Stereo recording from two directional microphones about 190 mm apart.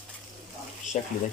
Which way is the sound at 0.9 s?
40° left (ahead or behind).